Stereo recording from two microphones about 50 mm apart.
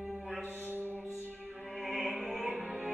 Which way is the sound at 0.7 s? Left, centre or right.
Right.